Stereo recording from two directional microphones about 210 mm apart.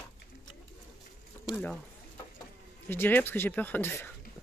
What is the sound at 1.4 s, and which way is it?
Speech, centre (ahead or behind).